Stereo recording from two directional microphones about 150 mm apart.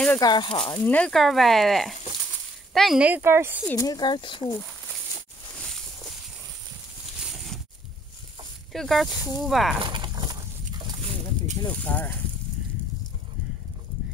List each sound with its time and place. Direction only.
0.2 s speech: 30° left (ahead or behind)
0.7 s speech: 10° left (ahead or behind); by 3.6 s 15° right (ahead or behind)
3.6 s speech: 25° left (ahead or behind)
7.2 s a sound: centre (ahead or behind)
8.7 s speech: centre (ahead or behind)
9.8 s a sound: 35° right (ahead or behind)
11.6 s speech: 10° left (ahead or behind)